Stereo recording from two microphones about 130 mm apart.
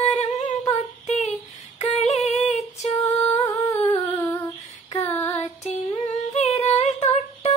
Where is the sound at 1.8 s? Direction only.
55° left (ahead or behind).